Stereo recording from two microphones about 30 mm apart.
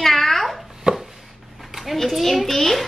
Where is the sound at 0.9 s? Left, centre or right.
Right.